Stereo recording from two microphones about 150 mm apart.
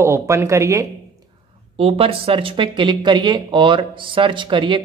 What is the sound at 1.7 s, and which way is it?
Speech, 40° right (ahead or behind).